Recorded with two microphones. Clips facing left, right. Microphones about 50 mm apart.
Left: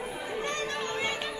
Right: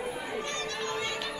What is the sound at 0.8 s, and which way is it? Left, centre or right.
Chatter, left.